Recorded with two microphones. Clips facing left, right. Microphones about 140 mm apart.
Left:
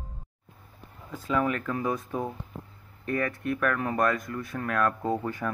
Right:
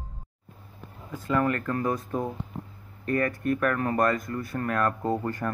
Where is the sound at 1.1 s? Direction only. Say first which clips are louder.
Right 2 dB; centre (ahead or behind).